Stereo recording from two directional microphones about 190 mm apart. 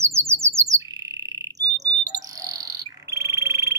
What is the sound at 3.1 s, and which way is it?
Frog, 15° right (ahead or behind).